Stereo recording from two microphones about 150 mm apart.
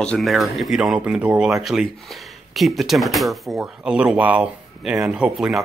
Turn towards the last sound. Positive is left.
turn(degrees=-5)  # may be behind; listen again after turning